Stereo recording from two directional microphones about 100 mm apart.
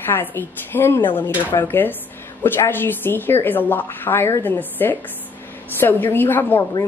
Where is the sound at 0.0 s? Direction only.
20° left (ahead or behind).